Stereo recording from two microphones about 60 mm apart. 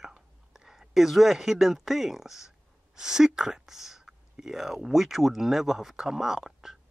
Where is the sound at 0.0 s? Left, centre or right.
Centre.